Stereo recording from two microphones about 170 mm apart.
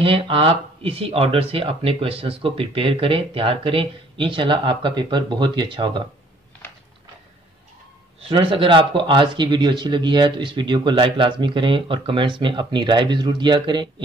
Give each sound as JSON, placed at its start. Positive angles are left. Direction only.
{"t": 0.0, "sound": "speech", "side_deg": -35}
{"t": 8.2, "sound": "speech", "side_deg": -30}